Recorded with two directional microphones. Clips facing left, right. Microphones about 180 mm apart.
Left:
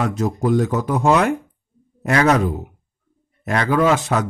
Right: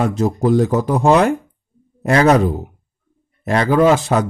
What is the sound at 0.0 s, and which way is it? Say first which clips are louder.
Speech: right 4 dB; 30° right (ahead or behind).